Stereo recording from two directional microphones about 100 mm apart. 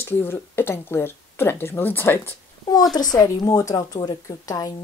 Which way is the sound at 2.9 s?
40° left (ahead or behind).